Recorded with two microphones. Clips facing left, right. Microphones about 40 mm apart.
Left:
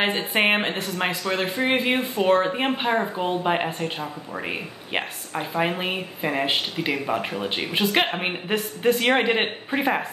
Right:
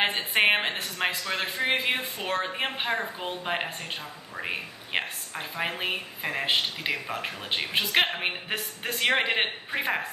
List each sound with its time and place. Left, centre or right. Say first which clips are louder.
0.0 s a woman's voice: left 2 dB; centre
7.1 s speech: left 7 dB; centre
7.4 s a woman's voice: left 4 dB; centre